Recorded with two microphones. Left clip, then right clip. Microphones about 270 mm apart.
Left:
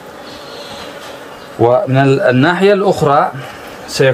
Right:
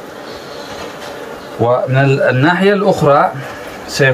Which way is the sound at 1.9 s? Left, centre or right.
Left.